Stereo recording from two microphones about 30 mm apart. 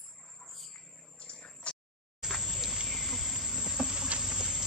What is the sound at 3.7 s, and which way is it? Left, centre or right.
Insect, right.